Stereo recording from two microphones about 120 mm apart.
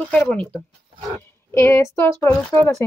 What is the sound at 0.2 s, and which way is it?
Speech, 10° left (ahead or behind).